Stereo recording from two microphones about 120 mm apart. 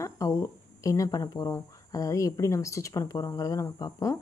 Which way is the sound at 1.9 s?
30° left (ahead or behind).